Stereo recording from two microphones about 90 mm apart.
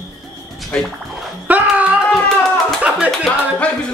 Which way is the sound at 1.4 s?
15° right (ahead or behind).